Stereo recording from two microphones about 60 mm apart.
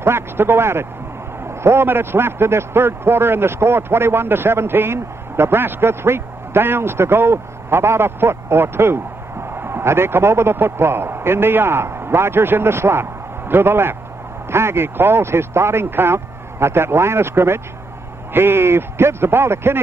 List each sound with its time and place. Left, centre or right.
0.0 s a man's voice: right